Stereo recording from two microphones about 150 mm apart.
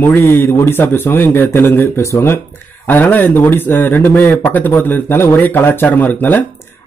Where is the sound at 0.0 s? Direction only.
15° left (ahead or behind).